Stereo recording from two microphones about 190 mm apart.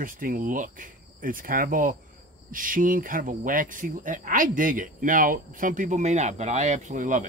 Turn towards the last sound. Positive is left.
turn(degrees=-40)  # may be behind; listen again after turning